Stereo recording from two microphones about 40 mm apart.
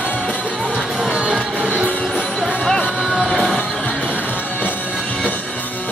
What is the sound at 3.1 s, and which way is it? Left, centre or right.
Music, centre.